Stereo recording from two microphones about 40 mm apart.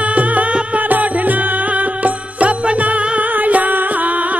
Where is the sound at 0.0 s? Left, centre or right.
Right.